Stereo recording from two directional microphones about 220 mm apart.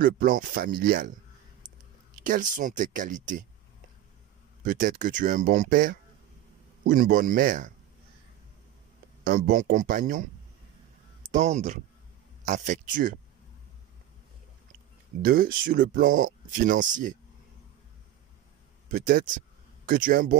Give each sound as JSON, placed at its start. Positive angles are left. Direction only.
{"t": 0.0, "sound": "speech", "side_deg": -40}
{"t": 2.2, "sound": "speech", "side_deg": -35}
{"t": 4.6, "sound": "speech", "side_deg": -35}
{"t": 9.2, "sound": "speech", "side_deg": -35}
{"t": 11.3, "sound": "speech", "side_deg": -35}
{"t": 15.2, "sound": "speech", "side_deg": -40}
{"t": 18.9, "sound": "speech", "side_deg": -40}